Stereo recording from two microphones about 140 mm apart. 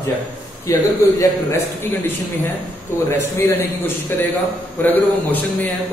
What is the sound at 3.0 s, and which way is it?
A man's voice, 20° left (ahead or behind).